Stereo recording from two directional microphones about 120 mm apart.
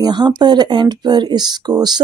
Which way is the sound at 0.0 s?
35° right (ahead or behind).